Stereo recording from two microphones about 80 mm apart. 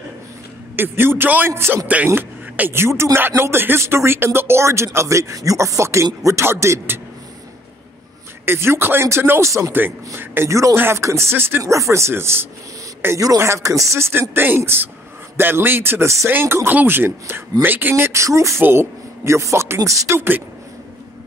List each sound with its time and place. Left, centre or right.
0.7 s speech: right
8.5 s speech: right
10.5 s speech: right
11.6 s speech: right
20.2 s speech: right